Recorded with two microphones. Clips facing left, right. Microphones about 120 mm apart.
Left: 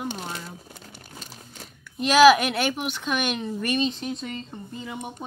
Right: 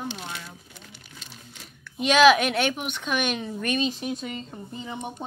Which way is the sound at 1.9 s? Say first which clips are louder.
Left 2 dB; centre (ahead or behind).